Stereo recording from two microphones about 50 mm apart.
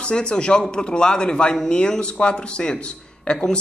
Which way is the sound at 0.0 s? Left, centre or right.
Centre.